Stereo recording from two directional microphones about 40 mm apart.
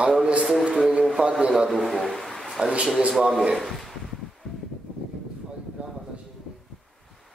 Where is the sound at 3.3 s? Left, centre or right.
Centre.